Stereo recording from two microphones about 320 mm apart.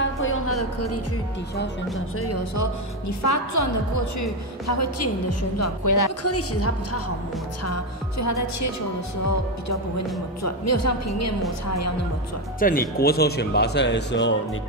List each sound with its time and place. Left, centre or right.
0.0 s music: left
2.1 s a woman's voice: left
5.6 s speech: left
6.2 s a woman's voice: left
10.4 s a woman's voice: left
12.5 s speech: left